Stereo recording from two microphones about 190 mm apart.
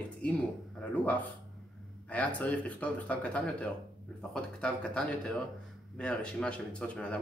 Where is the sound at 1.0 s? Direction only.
10° left (ahead or behind).